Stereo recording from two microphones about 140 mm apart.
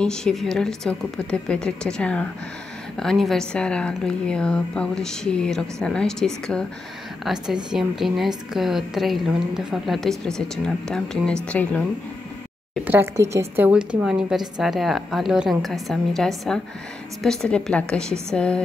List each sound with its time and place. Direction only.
0.0 s a woman's voice: 5° left (ahead or behind)
12.8 s a woman's voice: 15° right (ahead or behind)
13.7 s a woman's voice: 10° right (ahead or behind); by 18.6 s 10° left (ahead or behind)